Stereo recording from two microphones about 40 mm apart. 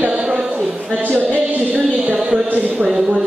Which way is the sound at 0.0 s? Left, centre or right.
Right.